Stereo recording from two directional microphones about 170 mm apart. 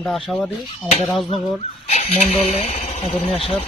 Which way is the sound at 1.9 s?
40° left (ahead or behind).